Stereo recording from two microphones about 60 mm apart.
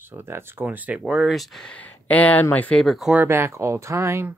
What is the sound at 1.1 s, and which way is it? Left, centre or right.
Speech, centre.